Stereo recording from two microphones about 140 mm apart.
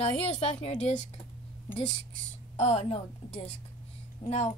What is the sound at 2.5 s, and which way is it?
Speech, 50° left (ahead or behind).